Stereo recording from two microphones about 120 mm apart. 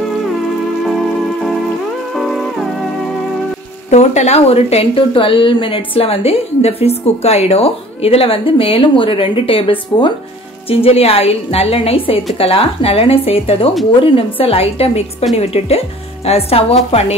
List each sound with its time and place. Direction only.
2.1 s music: centre (ahead or behind)
3.9 s a woman's voice: 70° left (ahead or behind)